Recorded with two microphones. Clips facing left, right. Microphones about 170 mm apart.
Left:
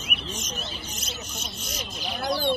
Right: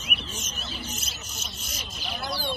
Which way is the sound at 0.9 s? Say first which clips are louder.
Left 4 dB; centre (ahead or behind).